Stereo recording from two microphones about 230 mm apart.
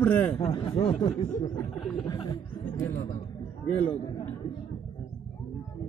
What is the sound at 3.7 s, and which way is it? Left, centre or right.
Speech, left.